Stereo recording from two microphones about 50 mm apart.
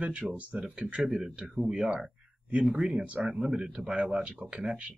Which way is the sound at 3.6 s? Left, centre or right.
Right.